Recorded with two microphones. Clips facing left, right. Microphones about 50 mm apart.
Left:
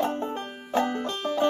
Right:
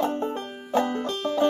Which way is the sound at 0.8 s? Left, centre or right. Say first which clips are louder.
Right 1 dB; centre.